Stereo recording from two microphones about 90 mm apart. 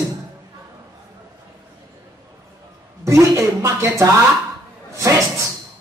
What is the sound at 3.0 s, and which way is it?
Speech, 30° right (ahead or behind).